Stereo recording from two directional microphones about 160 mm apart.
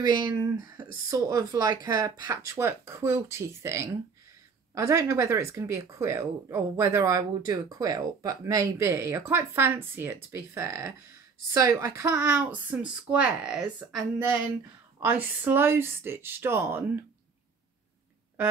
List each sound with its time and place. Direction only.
0.0 s speech: 25° right (ahead or behind)